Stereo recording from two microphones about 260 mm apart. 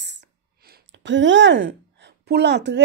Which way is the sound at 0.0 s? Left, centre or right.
Right.